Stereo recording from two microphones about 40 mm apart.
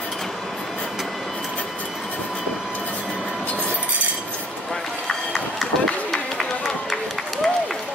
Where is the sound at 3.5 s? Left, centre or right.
Left.